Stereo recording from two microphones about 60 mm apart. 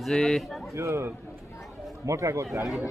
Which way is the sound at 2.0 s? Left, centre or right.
Right.